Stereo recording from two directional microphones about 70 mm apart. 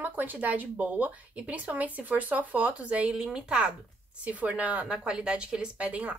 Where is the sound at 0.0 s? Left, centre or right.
Right.